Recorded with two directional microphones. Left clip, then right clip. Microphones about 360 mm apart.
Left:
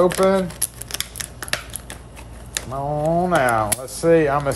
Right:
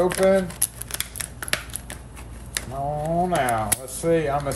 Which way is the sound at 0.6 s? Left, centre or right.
Centre.